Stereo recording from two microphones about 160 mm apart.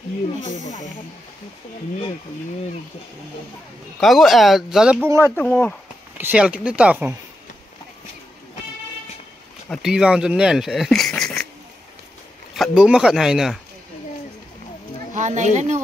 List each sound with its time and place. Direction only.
0.5 s speech: 50° left (ahead or behind)
4.0 s speech: centre (ahead or behind)
5.2 s speech: 15° left (ahead or behind)
6.1 s speech: 10° right (ahead or behind)
9.7 s speech: centre (ahead or behind)
12.5 s speech: centre (ahead or behind)
15.1 s a child's voice: 50° right (ahead or behind)